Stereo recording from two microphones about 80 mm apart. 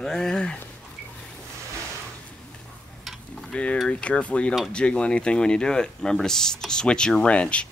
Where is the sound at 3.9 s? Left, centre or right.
Centre.